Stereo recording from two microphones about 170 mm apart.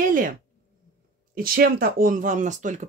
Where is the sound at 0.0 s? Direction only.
50° right (ahead or behind).